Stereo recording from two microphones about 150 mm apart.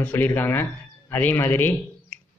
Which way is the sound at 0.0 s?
15° left (ahead or behind).